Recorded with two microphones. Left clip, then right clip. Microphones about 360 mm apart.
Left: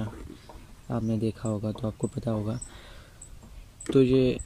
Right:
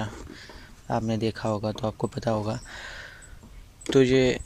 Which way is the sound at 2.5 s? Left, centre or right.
Centre.